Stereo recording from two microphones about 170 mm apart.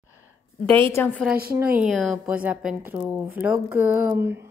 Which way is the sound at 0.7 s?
35° right (ahead or behind).